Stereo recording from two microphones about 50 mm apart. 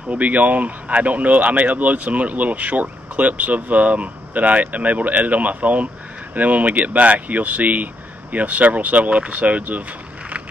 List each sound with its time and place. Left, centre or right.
0.1 s speech: right